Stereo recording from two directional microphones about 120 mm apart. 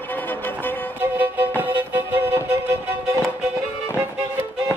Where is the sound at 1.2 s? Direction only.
15° right (ahead or behind).